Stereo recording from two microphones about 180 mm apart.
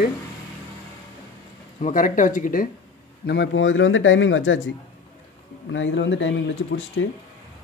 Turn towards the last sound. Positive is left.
turn(degrees=85)